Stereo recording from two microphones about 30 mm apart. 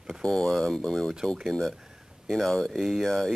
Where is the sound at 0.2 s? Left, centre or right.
Left.